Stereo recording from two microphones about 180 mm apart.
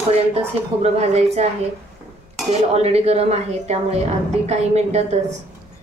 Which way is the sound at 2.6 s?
35° right (ahead or behind).